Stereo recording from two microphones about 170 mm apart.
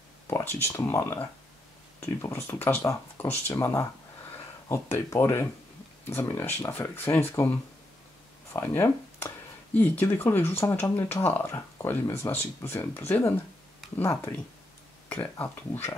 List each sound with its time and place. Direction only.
0.3 s speech: 15° left (ahead or behind)
8.5 s speech: 15° left (ahead or behind)